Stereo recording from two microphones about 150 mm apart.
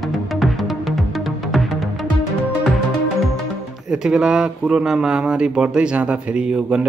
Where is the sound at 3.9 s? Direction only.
5° right (ahead or behind).